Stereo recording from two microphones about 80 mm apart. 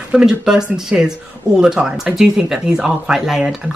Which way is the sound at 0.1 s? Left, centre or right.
Centre.